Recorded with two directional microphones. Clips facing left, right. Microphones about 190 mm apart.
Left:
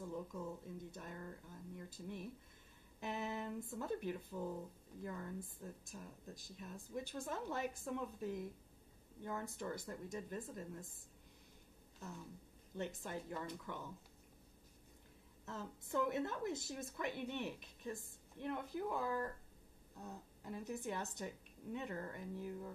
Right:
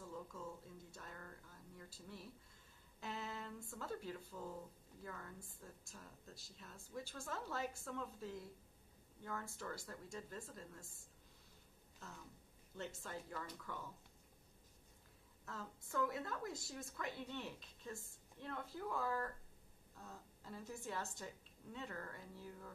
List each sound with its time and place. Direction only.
0.0 s a sound: 20° left (ahead or behind)
0.9 s a woman's voice: 20° left (ahead or behind)
12.7 s a woman's voice: 15° left (ahead or behind)
15.4 s a woman's voice: 20° left (ahead or behind)